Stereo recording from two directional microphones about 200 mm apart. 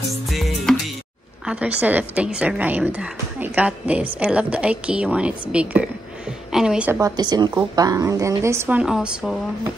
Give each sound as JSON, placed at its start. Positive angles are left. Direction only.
{"t": 0.3, "sound": "music", "side_deg": 0}
{"t": 1.4, "sound": "a woman's voice", "side_deg": -5}